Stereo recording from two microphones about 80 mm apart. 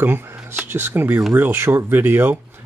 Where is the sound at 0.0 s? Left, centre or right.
Right.